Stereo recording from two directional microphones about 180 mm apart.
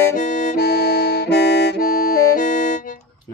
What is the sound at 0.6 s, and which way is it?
Music, 65° left (ahead or behind).